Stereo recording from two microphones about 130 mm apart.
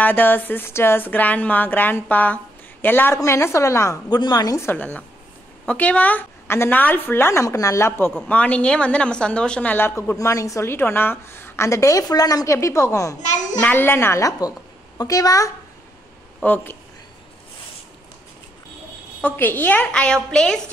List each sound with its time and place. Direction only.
0.0 s a woman's voice: 15° left (ahead or behind); by 4.6 s 35° left (ahead or behind)
4.6 s speech: 15° left (ahead or behind)
8.3 s a woman's voice: 10° left (ahead or behind)
13.2 s a child's voice: 70° left (ahead or behind)
13.6 s a woman's voice: 15° left (ahead or behind)
16.4 s speech: 15° left (ahead or behind)
19.2 s a woman's voice: 15° left (ahead or behind)